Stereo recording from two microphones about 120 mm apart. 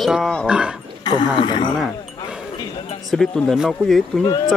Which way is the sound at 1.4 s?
40° left (ahead or behind).